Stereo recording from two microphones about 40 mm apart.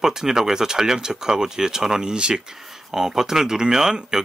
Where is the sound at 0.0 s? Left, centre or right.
Centre.